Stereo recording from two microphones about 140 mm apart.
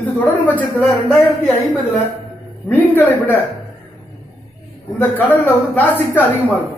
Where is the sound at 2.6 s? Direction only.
15° left (ahead or behind).